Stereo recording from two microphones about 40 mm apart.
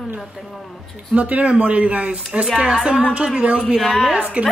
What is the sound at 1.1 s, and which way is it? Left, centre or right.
Speech, right.